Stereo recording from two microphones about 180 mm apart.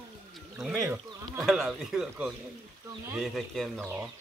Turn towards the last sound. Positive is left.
turn(degrees=0)  # may be behind; listen again after turning